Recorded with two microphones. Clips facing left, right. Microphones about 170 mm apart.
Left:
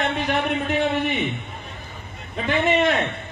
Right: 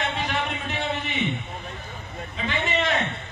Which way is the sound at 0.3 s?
55° left (ahead or behind).